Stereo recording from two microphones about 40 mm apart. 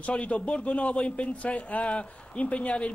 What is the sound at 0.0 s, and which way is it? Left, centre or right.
A man's voice, left.